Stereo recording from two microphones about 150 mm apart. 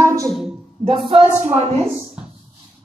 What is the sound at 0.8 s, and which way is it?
A woman's voice, 35° right (ahead or behind).